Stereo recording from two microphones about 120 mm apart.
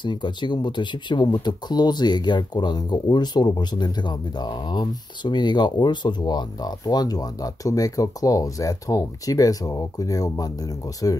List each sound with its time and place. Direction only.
0.0 s speech: 40° left (ahead or behind)